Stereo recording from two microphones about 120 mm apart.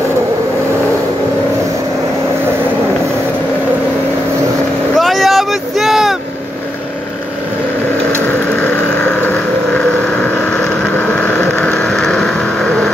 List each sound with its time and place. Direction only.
4.9 s vehicle: centre (ahead or behind)
8.6 s boat: 15° left (ahead or behind)
11.1 s vehicle: 15° left (ahead or behind)